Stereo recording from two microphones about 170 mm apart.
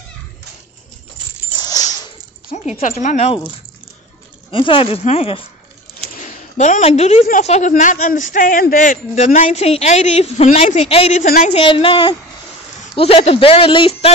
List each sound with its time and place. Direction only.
1.6 s coin: 20° left (ahead or behind)
2.8 s speech: 45° left (ahead or behind)
4.5 s speech: 30° left (ahead or behind)
6.1 s a sound: 45° left (ahead or behind)
7.2 s speech: 45° left (ahead or behind)
11.2 s speech: 55° left (ahead or behind)
11.5 s speech: 30° left (ahead or behind)